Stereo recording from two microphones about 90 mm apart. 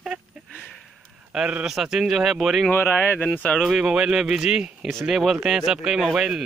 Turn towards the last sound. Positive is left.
turn(degrees=-5)  # may be behind; listen again after turning